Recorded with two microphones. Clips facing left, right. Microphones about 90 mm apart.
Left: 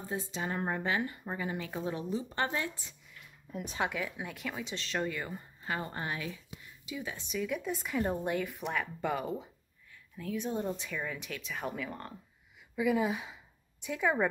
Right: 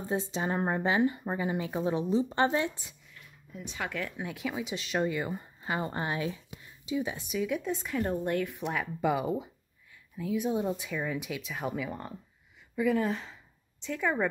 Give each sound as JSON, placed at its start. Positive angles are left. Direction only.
{"t": 0.1, "sound": "speech", "side_deg": -25}
{"t": 3.9, "sound": "speech", "side_deg": 5}
{"t": 7.2, "sound": "speech", "side_deg": -5}
{"t": 12.7, "sound": "speech", "side_deg": 5}